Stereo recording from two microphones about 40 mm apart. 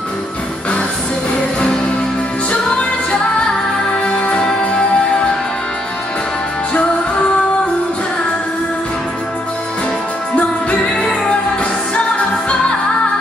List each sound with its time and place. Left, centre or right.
2.7 s music: left
6.7 s music: left
10.3 s music: left